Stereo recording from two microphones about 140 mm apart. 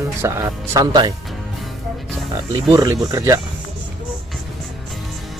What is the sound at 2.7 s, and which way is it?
Speech, 25° right (ahead or behind).